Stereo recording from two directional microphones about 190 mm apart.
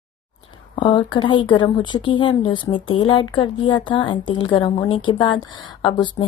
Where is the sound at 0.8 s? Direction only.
25° left (ahead or behind).